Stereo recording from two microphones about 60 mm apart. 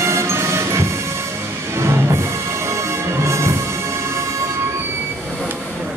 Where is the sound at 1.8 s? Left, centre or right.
Right.